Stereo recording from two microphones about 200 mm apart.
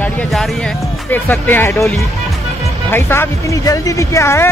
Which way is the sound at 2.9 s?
10° left (ahead or behind).